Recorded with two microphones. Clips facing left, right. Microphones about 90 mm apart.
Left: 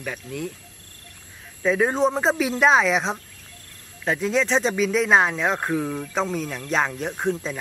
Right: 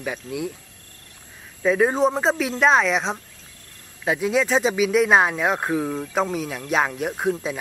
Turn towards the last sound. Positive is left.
turn(degrees=-5)  # may be behind; listen again after turning